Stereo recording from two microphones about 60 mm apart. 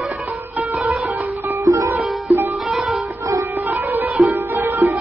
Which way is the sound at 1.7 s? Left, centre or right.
Right.